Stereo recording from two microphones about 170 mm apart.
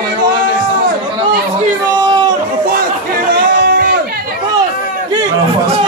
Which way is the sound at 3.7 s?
60° right (ahead or behind).